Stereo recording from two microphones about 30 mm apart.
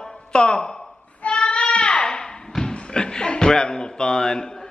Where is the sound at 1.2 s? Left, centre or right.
Left.